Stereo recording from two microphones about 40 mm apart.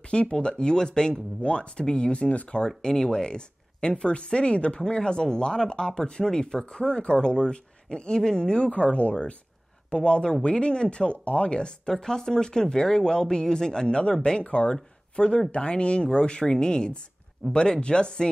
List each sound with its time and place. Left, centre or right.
0.1 s speech: left
2.8 s speech: centre
8.5 s speech: left
9.9 s speech: left